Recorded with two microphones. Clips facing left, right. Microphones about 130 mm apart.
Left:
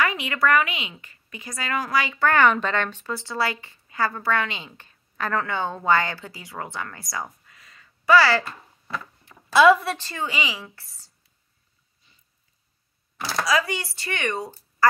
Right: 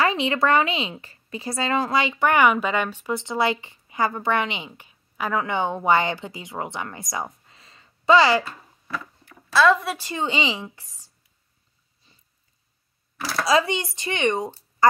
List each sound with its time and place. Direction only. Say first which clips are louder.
0.0 s a woman's voice: right 2 dB; 30° right (ahead or behind)
8.8 s a sound: right 1 dB; 20° left (ahead or behind)
9.9 s a woman's voice: right 5 dB; 15° right (ahead or behind)
10.2 s a woman's voice: right 3 dB; 25° right (ahead or behind)
13.5 s a woman's voice: right 5 dB; 25° right (ahead or behind)